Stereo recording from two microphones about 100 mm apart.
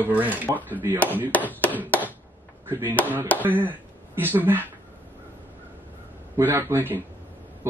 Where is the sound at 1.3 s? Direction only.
20° left (ahead or behind).